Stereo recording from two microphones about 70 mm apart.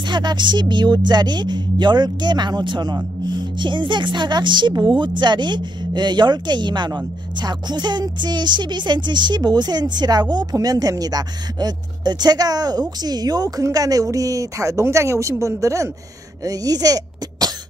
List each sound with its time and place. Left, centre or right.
0.0 s a woman's voice: right
10.3 s speech: right
16.4 s speech: right